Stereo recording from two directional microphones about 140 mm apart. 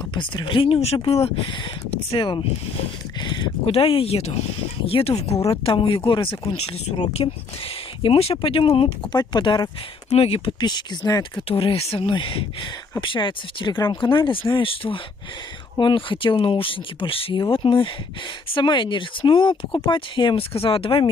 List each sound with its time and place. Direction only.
0.1 s speech: 35° left (ahead or behind)
5.3 s speech: 20° left (ahead or behind)
5.7 s speech: 40° left (ahead or behind)
10.0 s speech: 45° left (ahead or behind)
10.6 s speech: 30° left (ahead or behind)
11.4 s speech: 45° left (ahead or behind)